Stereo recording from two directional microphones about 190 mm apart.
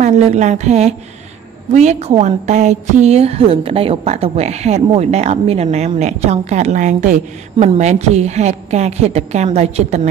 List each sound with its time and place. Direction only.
0.0 s a woman's voice: 35° right (ahead or behind)